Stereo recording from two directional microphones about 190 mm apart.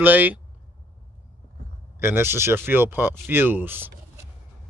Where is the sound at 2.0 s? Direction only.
10° right (ahead or behind).